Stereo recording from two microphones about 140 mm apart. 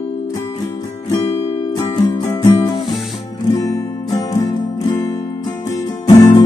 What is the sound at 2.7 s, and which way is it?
Music, centre (ahead or behind).